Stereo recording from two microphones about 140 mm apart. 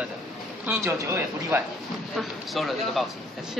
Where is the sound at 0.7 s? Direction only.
15° right (ahead or behind).